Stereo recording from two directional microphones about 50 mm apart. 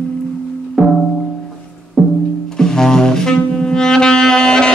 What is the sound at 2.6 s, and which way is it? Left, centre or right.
Saxophone, centre.